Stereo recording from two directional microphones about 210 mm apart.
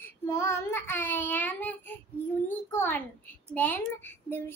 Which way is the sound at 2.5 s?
10° left (ahead or behind).